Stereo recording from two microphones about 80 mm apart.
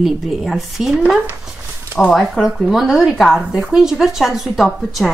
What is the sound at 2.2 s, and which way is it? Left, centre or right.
A woman's voice, centre.